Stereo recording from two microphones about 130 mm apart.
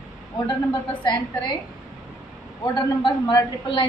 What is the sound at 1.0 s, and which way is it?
Speech, 35° left (ahead or behind).